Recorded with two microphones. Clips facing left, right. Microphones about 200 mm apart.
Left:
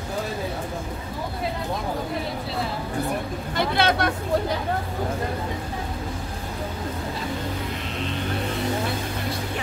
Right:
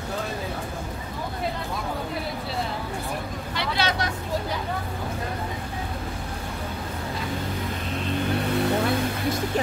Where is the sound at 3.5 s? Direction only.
50° left (ahead or behind).